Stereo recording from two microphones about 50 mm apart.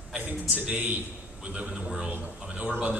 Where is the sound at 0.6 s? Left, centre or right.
Right.